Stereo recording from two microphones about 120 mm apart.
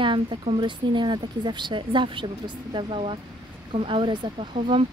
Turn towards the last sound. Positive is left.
turn(degrees=-45)  # may be behind; listen again after turning